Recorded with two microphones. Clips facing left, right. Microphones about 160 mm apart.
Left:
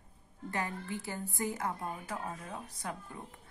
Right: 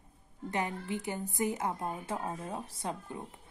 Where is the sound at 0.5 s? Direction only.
20° right (ahead or behind).